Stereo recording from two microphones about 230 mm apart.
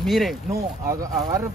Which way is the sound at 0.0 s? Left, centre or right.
Centre.